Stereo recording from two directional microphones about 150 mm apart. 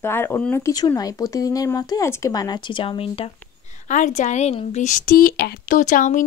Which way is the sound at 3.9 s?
60° left (ahead or behind).